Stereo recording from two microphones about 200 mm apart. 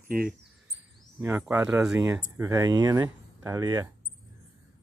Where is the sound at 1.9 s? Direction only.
15° right (ahead or behind).